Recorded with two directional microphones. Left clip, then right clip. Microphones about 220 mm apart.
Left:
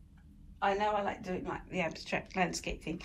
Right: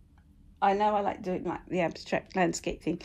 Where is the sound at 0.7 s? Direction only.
25° right (ahead or behind).